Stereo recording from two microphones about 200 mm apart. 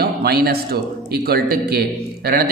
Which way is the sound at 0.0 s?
50° right (ahead or behind).